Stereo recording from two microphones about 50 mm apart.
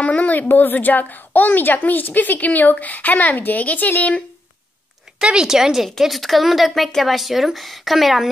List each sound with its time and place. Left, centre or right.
0.0 s a woman's voice: left
5.2 s a woman's voice: centre